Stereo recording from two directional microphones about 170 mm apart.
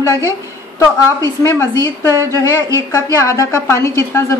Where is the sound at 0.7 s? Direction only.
15° left (ahead or behind).